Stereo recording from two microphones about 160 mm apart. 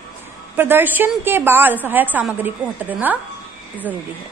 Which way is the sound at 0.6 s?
10° right (ahead or behind).